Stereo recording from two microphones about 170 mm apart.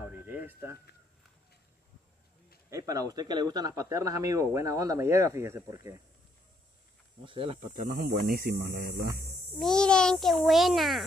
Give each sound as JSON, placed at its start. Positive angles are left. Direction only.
{"t": 0.1, "sound": "a sound", "side_deg": -10}
{"t": 2.7, "sound": "speech", "side_deg": -20}
{"t": 7.2, "sound": "speech", "side_deg": -30}
{"t": 7.6, "sound": "speech", "side_deg": -55}
{"t": 9.6, "sound": "a child's voice", "side_deg": 5}